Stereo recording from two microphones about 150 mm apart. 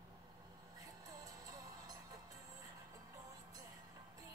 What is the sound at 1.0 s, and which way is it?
Music, 25° right (ahead or behind).